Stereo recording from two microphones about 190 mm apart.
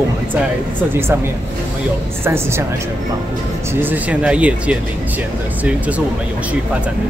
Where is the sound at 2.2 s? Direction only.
15° right (ahead or behind).